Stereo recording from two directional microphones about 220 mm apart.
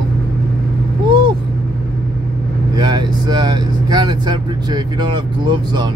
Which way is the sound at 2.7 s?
20° right (ahead or behind).